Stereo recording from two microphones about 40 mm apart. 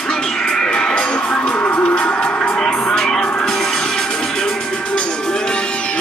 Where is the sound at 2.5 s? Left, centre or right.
Centre.